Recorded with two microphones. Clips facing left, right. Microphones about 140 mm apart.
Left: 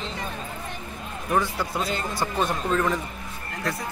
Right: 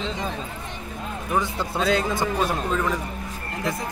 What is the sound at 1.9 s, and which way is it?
Speech, 90° right.